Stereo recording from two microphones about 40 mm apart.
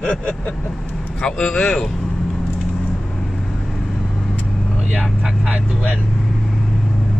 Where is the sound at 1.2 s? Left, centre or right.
Centre.